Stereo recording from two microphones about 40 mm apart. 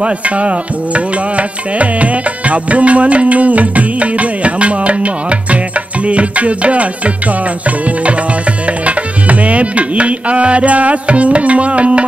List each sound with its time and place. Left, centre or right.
0.0 s music: right
8.8 s music: right